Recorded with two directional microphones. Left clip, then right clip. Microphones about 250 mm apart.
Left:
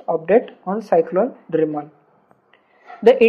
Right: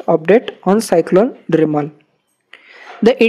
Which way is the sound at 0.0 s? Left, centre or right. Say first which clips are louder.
Right 5 dB; right.